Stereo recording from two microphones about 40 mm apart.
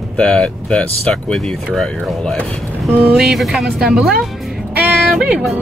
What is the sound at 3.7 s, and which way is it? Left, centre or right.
Speech, centre.